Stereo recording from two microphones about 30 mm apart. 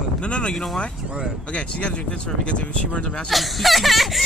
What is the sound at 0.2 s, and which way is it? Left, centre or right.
Speech, left.